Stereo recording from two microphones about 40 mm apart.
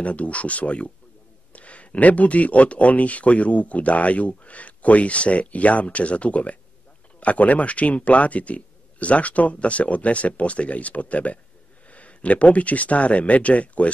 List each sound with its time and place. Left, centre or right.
0.0 s speech: left